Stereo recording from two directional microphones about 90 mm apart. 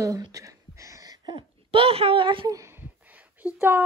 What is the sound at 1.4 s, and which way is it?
A child's voice, 85° right.